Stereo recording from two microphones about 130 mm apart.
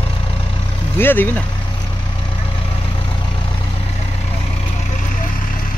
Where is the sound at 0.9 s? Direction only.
15° left (ahead or behind).